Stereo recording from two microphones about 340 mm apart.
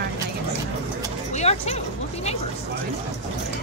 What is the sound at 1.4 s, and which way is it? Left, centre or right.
Speech, centre.